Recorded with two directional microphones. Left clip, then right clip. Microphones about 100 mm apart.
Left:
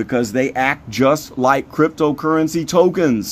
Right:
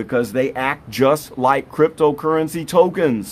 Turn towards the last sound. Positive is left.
turn(degrees=15)  # may be behind; listen again after turning